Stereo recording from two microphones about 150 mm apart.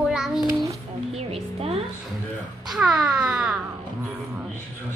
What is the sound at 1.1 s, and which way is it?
Music, 40° right (ahead or behind).